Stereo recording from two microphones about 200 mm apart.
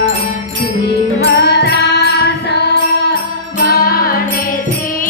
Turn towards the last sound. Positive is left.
turn(degrees=50)  # may be behind; listen again after turning